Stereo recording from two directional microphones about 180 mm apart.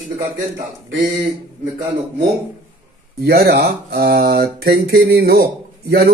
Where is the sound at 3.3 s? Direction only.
60° right (ahead or behind).